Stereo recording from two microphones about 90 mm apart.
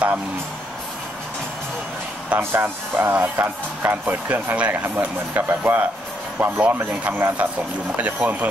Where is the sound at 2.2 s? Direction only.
20° right (ahead or behind).